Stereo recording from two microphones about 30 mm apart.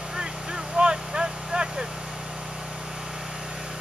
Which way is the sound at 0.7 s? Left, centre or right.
Right.